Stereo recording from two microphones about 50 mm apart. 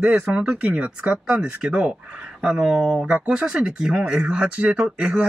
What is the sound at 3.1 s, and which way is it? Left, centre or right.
Speech, right.